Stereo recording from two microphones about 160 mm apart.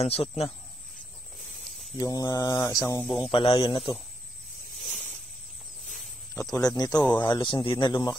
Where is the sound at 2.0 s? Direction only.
20° left (ahead or behind).